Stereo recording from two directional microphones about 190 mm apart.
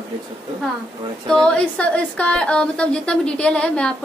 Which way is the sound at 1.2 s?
5° left (ahead or behind).